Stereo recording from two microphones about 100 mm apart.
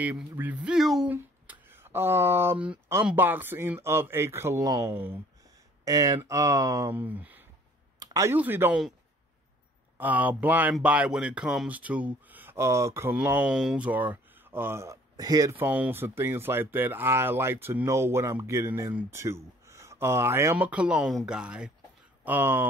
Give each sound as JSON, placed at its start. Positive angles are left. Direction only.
{"t": 0.0, "sound": "speech", "side_deg": -15}
{"t": 1.0, "sound": "a sound", "side_deg": -20}
{"t": 3.2, "sound": "speech", "side_deg": -20}
{"t": 5.9, "sound": "speech", "side_deg": -35}
{"t": 6.9, "sound": "speech", "side_deg": -15}
{"t": 8.0, "sound": "a sound", "side_deg": -35}
{"t": 8.3, "sound": "speech", "side_deg": -20}
{"t": 9.9, "sound": "speech", "side_deg": -15}
{"t": 13.5, "sound": "speech", "side_deg": -5}
{"t": 15.1, "sound": "speech", "side_deg": -40}
{"t": 15.5, "sound": "speech", "side_deg": -15}
{"t": 20.5, "sound": "speech", "side_deg": -15}